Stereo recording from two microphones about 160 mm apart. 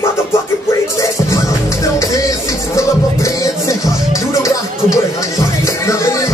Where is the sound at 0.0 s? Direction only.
15° left (ahead or behind).